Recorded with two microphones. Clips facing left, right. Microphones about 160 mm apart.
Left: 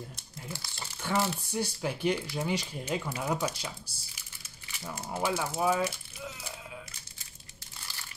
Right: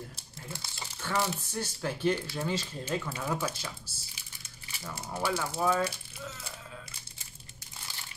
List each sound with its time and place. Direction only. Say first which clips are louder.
0.1 s crumpling: left 1 dB; 25° right (ahead or behind)
1.0 s speech: left 2 dB; 15° left (ahead or behind)
5.1 s speech: left 1 dB; 10° left (ahead or behind)